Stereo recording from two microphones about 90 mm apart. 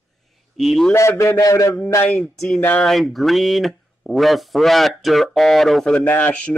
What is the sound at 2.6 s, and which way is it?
Speech, 20° left (ahead or behind).